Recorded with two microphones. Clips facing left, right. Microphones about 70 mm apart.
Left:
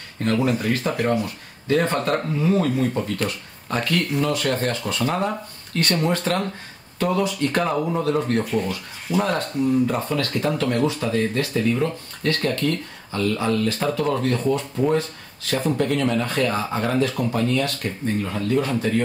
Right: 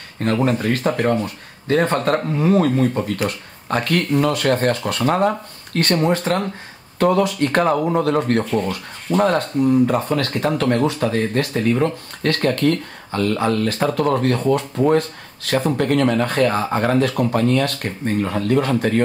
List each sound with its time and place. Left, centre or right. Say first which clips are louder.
0.2 s speech: right 3 dB; right
2.3 s speech: right 5 dB; right
5.9 s speech: right 3 dB; right
7.0 s speech: right 5 dB; right